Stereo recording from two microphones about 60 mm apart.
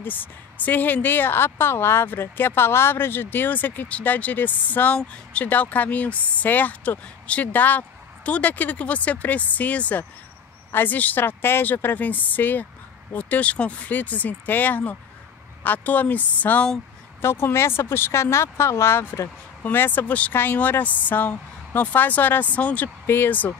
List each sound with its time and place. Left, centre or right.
0.0 s a woman's voice: left
17.2 s speech: left
23.0 s speech: left